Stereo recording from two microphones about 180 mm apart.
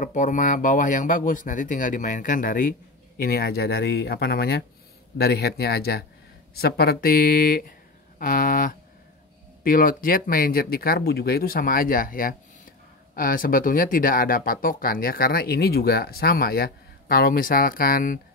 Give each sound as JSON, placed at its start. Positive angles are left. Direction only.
{"t": 0.0, "sound": "speech", "side_deg": 45}